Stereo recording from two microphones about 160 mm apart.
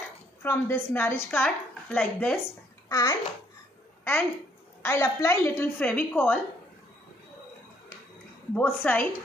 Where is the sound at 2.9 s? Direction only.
25° left (ahead or behind).